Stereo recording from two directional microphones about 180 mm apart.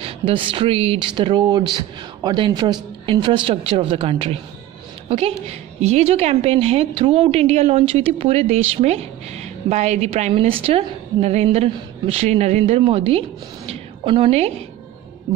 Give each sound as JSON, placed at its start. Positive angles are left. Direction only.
{"t": 0.0, "sound": "a woman's voice", "side_deg": -30}